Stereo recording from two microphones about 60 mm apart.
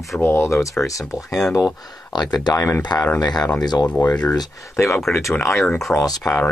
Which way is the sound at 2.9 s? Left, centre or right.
Left.